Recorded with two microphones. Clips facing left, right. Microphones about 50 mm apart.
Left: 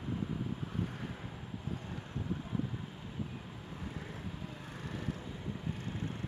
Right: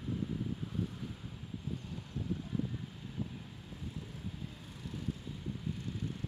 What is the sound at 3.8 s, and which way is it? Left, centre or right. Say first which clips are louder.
Vehicle: left 1 dB; left.